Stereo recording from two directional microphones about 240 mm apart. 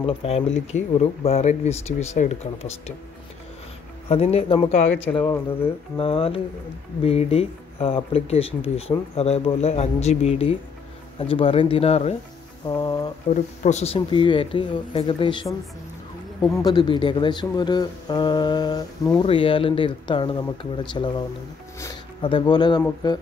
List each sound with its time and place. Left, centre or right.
0.0 s speech: left
4.1 s speech: left
12.6 s a sound: centre
13.3 s speech: left
16.5 s speech: centre